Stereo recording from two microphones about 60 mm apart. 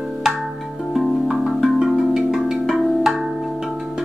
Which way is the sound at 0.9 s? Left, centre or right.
Centre.